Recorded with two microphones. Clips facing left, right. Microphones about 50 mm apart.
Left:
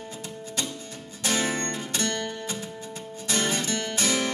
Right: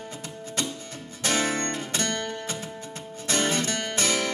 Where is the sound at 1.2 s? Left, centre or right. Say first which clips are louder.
Right 1 dB; right.